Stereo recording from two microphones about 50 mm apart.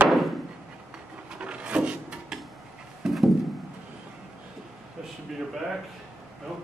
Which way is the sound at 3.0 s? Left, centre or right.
Centre.